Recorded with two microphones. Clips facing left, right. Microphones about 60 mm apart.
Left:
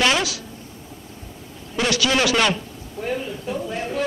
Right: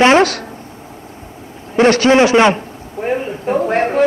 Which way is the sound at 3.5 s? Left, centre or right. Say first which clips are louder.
Right 13 dB; right.